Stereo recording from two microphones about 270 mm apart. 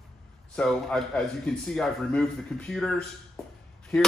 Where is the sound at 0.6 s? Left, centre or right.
Centre.